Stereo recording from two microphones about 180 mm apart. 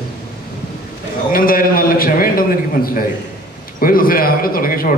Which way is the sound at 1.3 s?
55° left (ahead or behind).